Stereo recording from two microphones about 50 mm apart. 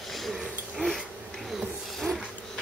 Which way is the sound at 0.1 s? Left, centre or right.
Centre.